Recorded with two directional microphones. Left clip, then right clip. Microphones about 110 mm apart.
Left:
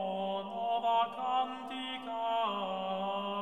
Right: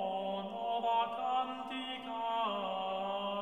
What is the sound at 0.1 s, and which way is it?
Mantra, 20° left (ahead or behind).